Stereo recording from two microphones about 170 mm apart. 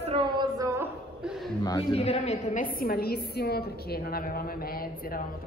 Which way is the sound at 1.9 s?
40° left (ahead or behind).